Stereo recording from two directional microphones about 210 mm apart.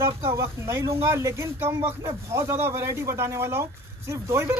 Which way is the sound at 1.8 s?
25° right (ahead or behind).